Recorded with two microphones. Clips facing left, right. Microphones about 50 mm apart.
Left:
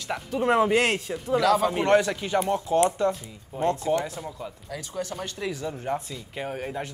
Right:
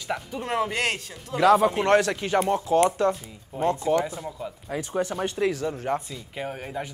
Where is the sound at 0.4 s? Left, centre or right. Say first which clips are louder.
Left 7 dB; centre.